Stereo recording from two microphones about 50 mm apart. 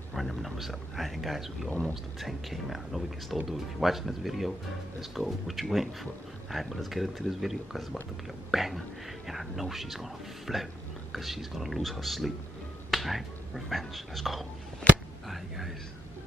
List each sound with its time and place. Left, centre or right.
0.1 s speech: centre
12.9 s finger snapping: centre
13.7 s a man's voice: centre